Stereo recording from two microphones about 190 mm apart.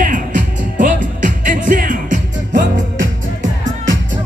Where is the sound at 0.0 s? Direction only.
45° right (ahead or behind).